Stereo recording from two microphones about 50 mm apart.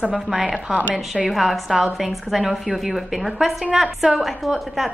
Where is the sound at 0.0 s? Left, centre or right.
Centre.